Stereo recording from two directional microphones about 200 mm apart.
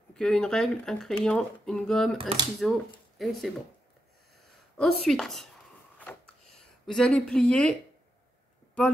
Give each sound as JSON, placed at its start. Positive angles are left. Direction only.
{"t": 0.1, "sound": "speech", "side_deg": 5}
{"t": 2.1, "sound": "speech", "side_deg": -25}
{"t": 3.2, "sound": "speech", "side_deg": 0}
{"t": 4.7, "sound": "speech", "side_deg": 0}
{"t": 5.9, "sound": "a sound", "side_deg": 5}